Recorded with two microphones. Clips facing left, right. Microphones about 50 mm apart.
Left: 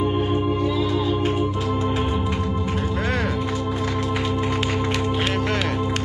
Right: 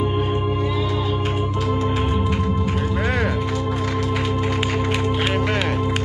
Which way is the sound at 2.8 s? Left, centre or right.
Centre.